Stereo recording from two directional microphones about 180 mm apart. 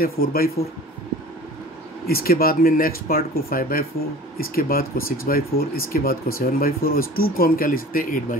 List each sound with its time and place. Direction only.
0.0 s speech: 55° left (ahead or behind)
2.0 s speech: 55° left (ahead or behind)